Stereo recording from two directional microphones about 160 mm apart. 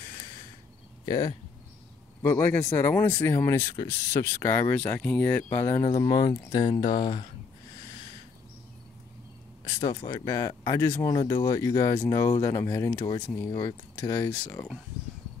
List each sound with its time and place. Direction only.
1.0 s speech: 30° left (ahead or behind)
2.2 s speech: 15° left (ahead or behind)
5.8 s speech: 25° left (ahead or behind)
9.8 s speech: 30° left (ahead or behind); by 14.7 s 10° left (ahead or behind)